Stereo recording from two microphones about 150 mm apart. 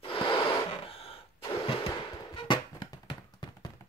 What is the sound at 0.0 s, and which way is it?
Gasp, 35° left (ahead or behind).